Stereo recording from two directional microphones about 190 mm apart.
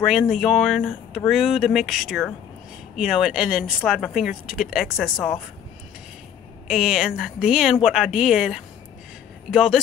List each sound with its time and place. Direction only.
0.3 s speech: centre (ahead or behind)
6.7 s speech: centre (ahead or behind)